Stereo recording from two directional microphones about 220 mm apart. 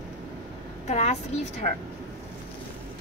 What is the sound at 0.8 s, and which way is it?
Speech, 30° left (ahead or behind).